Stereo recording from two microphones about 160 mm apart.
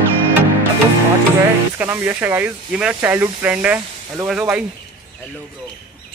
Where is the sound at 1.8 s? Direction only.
10° right (ahead or behind).